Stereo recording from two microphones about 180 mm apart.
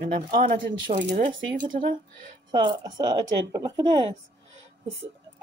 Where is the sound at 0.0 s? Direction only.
55° right (ahead or behind).